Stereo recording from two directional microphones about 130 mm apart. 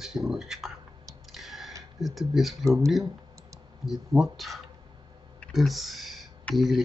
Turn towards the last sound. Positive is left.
turn(degrees=0)  # may be behind; listen again after turning